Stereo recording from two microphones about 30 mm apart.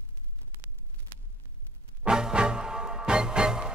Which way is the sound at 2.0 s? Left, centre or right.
Right.